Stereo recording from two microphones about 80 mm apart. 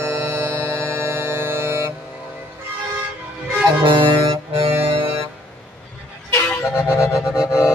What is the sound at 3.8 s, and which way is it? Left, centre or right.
Music, right.